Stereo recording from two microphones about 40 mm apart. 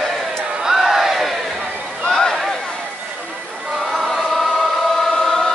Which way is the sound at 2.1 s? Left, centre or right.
Centre.